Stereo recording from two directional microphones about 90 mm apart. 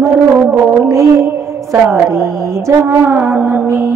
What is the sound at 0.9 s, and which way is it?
A woman's voice, 35° right (ahead or behind).